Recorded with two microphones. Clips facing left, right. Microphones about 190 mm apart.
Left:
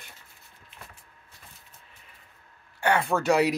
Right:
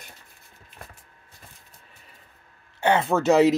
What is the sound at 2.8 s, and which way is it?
Speech, 20° right (ahead or behind).